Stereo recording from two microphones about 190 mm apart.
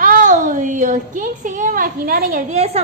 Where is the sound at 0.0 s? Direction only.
45° right (ahead or behind).